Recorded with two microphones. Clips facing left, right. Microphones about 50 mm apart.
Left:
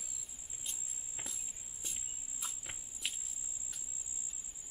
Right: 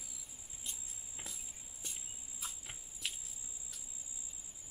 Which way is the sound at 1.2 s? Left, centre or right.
Centre.